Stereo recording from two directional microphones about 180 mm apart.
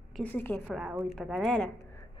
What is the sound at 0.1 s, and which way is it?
A woman's voice, 10° left (ahead or behind).